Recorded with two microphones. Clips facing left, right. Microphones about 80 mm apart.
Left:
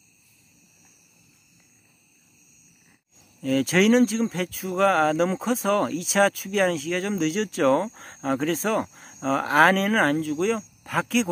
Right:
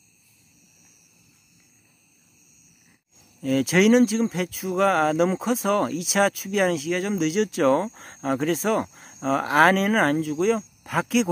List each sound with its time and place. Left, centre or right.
3.4 s speech: centre